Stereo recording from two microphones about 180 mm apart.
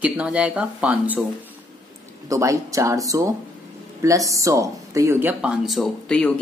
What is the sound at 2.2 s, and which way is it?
A woman's voice, 15° right (ahead or behind).